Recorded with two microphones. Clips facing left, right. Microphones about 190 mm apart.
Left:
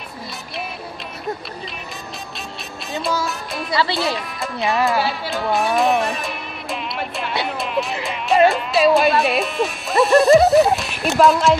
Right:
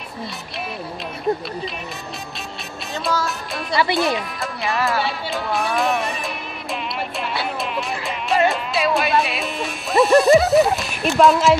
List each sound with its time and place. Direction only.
3.7 s speech: 15° right (ahead or behind)
4.1 s speech: centre (ahead or behind)
7.6 s music: centre (ahead or behind)